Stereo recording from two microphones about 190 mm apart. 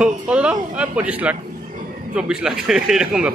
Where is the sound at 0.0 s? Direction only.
5° right (ahead or behind).